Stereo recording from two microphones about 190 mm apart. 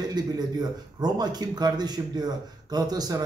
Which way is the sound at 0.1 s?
20° right (ahead or behind).